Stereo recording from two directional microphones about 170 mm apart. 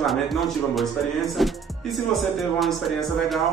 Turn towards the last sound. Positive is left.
turn(degrees=0)  # may be behind; listen again after turning